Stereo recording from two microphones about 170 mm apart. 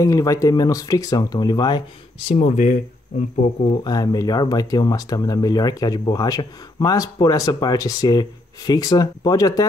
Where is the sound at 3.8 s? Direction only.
25° left (ahead or behind).